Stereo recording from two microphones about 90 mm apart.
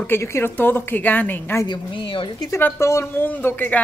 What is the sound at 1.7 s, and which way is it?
Speech, 70° left (ahead or behind).